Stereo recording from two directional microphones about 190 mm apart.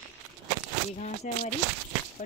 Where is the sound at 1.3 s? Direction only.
40° left (ahead or behind).